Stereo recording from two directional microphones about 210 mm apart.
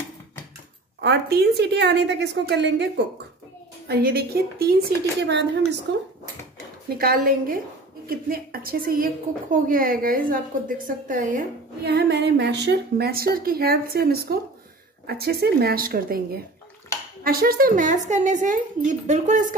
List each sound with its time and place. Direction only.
1.0 s a woman's voice: 55° right (ahead or behind)
7.0 s a woman's voice: 45° right (ahead or behind)
17.2 s speech: 45° right (ahead or behind)